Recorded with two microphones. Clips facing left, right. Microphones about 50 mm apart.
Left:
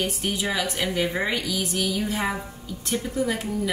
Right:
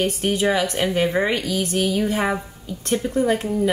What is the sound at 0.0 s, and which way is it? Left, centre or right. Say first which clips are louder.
A woman's voice: right 6 dB; right.